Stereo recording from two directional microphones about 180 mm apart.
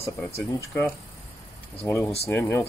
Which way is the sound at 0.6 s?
15° left (ahead or behind).